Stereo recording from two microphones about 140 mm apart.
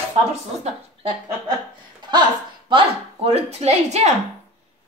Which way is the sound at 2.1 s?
35° right (ahead or behind).